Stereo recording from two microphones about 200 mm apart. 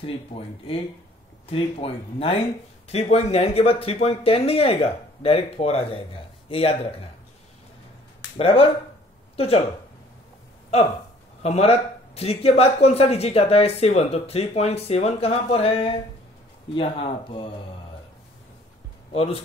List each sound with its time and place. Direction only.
0.0 s speech: 30° left (ahead or behind)
8.4 s speech: 30° left (ahead or behind)
11.4 s speech: 30° left (ahead or behind)
19.1 s speech: 30° left (ahead or behind)